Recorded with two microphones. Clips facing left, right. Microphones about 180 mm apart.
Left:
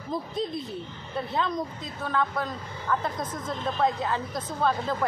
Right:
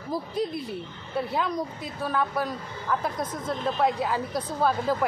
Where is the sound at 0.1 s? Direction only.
10° right (ahead or behind).